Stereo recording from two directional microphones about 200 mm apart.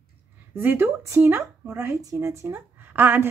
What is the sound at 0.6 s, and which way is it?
Speech, 10° right (ahead or behind).